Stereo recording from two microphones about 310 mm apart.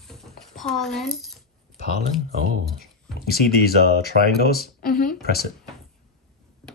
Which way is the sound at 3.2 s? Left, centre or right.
Left.